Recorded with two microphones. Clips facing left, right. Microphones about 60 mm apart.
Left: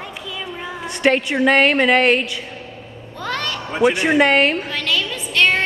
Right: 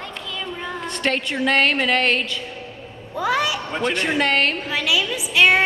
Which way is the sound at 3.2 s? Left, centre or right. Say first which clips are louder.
Right 4 dB; centre.